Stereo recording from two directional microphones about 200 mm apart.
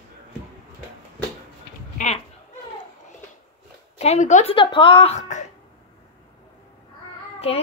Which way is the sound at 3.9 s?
35° left (ahead or behind).